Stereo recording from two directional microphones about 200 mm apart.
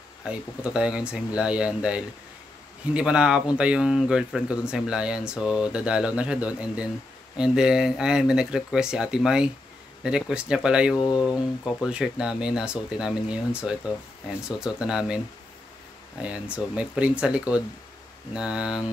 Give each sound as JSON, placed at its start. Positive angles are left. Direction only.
{"t": 0.2, "sound": "speech", "side_deg": -5}
{"t": 11.0, "sound": "speech", "side_deg": 20}
{"t": 11.2, "sound": "speech", "side_deg": -5}
{"t": 16.2, "sound": "speech", "side_deg": -5}